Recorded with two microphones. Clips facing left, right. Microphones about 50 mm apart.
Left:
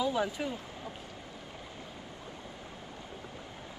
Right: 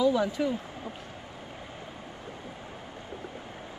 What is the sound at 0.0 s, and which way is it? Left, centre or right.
Speech, centre.